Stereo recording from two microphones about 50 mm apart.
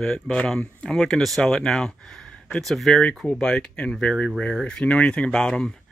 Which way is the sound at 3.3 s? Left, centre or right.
Centre.